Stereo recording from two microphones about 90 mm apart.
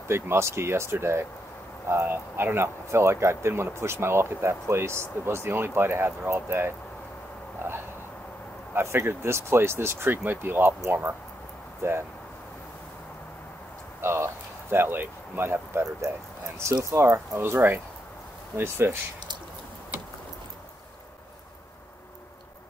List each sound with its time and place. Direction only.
0.1 s speech: 30° right (ahead or behind)
7.5 s hiccup: 25° right (ahead or behind)
8.7 s speech: 25° right (ahead or behind)
14.0 s speech: 30° right (ahead or behind)